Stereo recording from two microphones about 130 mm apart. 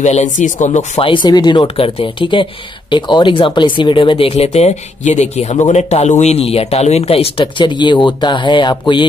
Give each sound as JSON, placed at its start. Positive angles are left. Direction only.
{"t": 0.0, "sound": "speech", "side_deg": 65}
{"t": 1.0, "sound": "speech", "side_deg": 40}